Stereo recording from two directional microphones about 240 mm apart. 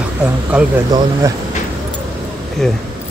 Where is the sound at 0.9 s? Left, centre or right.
Centre.